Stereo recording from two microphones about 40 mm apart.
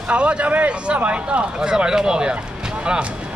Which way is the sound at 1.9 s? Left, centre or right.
Centre.